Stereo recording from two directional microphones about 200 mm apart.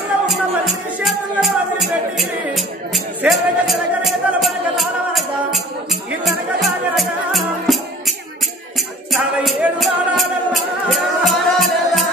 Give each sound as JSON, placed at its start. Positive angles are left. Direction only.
{"t": 0.3, "sound": "music", "side_deg": 0}